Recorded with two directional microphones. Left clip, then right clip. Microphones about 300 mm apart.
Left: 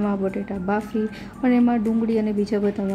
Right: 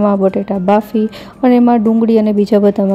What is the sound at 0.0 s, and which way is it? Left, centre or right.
A woman's voice, right.